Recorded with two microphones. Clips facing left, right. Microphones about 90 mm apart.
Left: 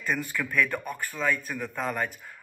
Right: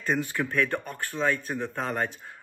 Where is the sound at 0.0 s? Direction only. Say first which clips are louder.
Right 2 dB; 30° right (ahead or behind).